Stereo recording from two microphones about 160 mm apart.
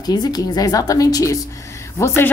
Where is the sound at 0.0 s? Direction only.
25° left (ahead or behind).